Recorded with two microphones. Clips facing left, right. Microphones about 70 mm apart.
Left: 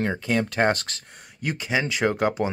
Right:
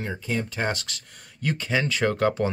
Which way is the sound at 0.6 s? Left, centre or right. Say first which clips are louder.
Left 6 dB; left.